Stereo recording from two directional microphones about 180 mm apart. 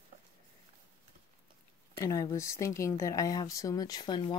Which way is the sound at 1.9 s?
20° left (ahead or behind).